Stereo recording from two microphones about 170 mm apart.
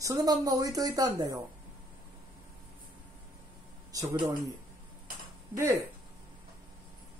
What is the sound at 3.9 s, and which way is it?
Speech, 25° right (ahead or behind).